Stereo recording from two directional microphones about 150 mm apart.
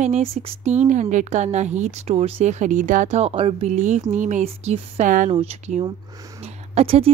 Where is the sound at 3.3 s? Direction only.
40° right (ahead or behind); by 5.3 s 55° right (ahead or behind).